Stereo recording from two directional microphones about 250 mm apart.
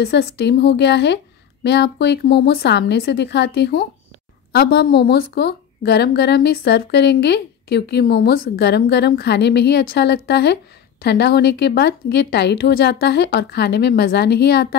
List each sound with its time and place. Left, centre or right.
0.0 s a woman's voice: left